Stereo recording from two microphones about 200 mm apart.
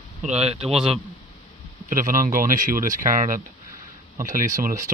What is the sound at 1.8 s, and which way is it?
Speech, 40° right (ahead or behind).